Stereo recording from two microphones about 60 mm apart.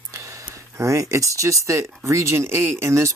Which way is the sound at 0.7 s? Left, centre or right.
Right.